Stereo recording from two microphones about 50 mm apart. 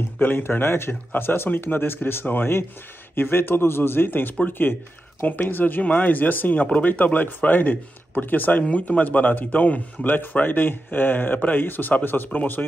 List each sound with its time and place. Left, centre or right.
0.2 s speech: left
8.6 s speech: left
10.0 s speech: left